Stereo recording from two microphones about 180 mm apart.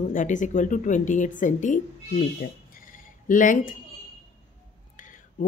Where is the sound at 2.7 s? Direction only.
50° left (ahead or behind).